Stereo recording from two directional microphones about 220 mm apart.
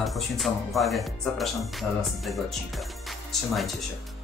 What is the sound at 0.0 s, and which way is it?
Speech, centre (ahead or behind).